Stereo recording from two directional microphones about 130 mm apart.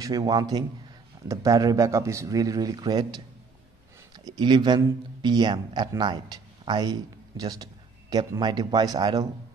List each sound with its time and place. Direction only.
0.0 s a man's voice: 30° right (ahead or behind)